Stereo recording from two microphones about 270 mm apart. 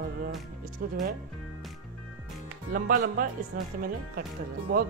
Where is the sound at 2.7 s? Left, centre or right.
Right.